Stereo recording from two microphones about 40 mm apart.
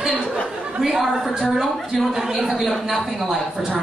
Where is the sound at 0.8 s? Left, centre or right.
Centre.